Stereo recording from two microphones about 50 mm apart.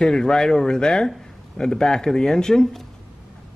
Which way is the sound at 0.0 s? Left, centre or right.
Centre.